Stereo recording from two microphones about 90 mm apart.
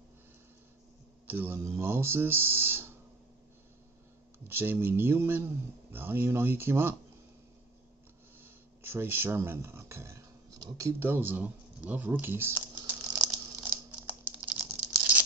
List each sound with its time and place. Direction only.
1.2 s a man's voice: 20° right (ahead or behind)
4.5 s speech: 25° right (ahead or behind)
8.4 s a sound: 25° right (ahead or behind)
11.0 s speech: 25° right (ahead or behind)
13.2 s crumpling: 5° right (ahead or behind)
13.7 s computer keyboard: 20° right (ahead or behind)